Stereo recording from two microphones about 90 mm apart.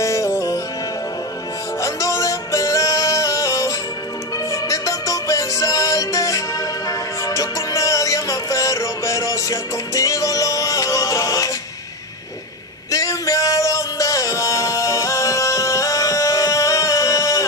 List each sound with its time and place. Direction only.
0.0 s music: 35° left (ahead or behind)
1.8 s music: 40° left (ahead or behind)
12.9 s music: 40° left (ahead or behind)